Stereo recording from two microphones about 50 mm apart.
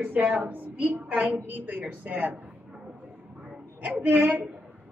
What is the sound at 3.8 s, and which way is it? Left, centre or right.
Speech, right.